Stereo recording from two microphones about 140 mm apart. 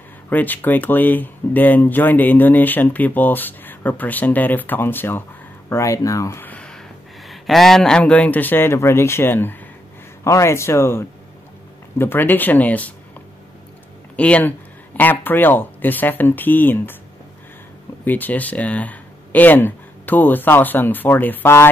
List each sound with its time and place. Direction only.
0.3 s speech: 10° left (ahead or behind)
14.1 s speech: 10° left (ahead or behind)
18.0 s speech: 15° left (ahead or behind)